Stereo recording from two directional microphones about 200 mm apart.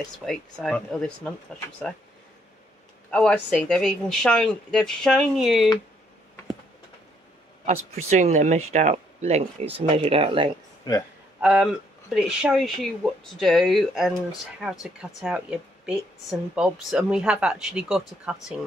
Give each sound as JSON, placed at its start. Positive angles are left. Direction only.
{"t": 0.0, "sound": "speech", "side_deg": 0}
{"t": 3.1, "sound": "speech", "side_deg": 5}
{"t": 8.1, "sound": "speech", "side_deg": -35}
{"t": 10.9, "sound": "speech", "side_deg": 20}
{"t": 11.4, "sound": "speech", "side_deg": -5}